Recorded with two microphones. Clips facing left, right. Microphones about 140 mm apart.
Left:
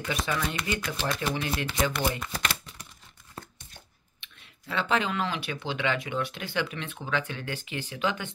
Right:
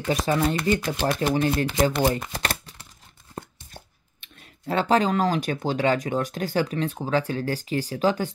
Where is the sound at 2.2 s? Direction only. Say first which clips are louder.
Right 3 dB; 35° right (ahead or behind).